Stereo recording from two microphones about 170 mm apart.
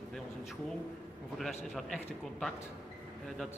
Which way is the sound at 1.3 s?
Centre (ahead or behind).